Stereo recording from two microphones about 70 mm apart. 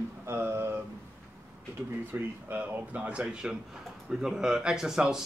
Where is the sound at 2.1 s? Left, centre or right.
Right.